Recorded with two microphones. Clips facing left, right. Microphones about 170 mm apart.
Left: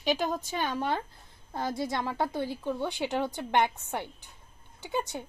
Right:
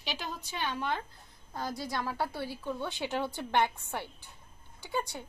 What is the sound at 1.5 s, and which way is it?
A woman's voice, 25° left (ahead or behind).